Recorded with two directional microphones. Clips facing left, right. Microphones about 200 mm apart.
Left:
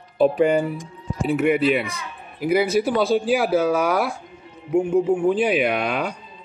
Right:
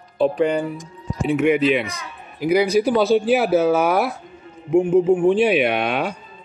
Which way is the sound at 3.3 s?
25° right (ahead or behind).